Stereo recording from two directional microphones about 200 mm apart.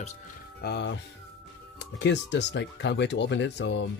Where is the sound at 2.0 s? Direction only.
60° left (ahead or behind).